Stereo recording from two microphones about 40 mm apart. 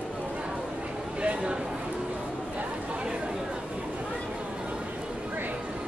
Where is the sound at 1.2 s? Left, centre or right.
Right.